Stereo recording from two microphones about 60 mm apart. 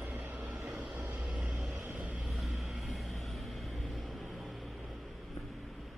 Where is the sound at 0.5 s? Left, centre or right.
Centre.